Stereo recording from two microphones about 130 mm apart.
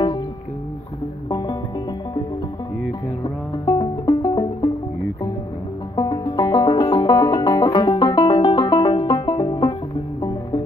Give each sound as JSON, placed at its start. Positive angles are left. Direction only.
{"t": 3.6, "sound": "music", "side_deg": 30}
{"t": 5.9, "sound": "music", "side_deg": 30}